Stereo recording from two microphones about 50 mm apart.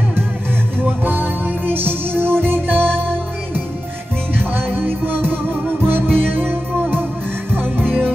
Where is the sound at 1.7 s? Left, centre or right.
Right.